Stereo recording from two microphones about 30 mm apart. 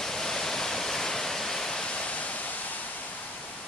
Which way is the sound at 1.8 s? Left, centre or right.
Left.